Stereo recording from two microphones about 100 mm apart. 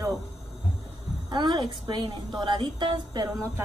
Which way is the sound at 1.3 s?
50° right (ahead or behind).